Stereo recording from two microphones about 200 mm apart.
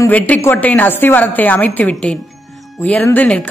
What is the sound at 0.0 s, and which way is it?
Speech, 10° left (ahead or behind).